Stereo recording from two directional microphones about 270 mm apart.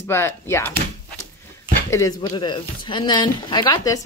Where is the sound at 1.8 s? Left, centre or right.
Centre.